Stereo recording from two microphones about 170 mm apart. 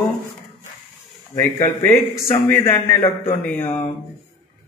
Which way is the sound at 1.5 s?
15° left (ahead or behind).